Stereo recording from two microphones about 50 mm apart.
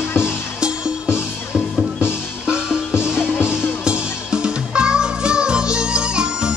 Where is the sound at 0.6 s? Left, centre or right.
Centre.